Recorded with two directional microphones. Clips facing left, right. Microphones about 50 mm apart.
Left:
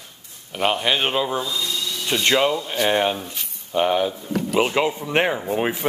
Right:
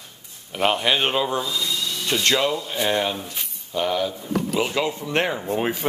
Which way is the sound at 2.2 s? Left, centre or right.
Left.